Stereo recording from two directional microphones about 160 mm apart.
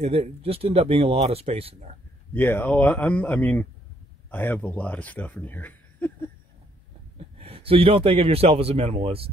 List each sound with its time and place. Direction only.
0.0 s speech: 40° right (ahead or behind)
2.3 s speech: 10° left (ahead or behind)
7.2 s a man's voice: 40° right (ahead or behind)